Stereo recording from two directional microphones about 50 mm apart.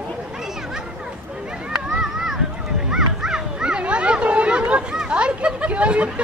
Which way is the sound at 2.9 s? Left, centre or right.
Centre.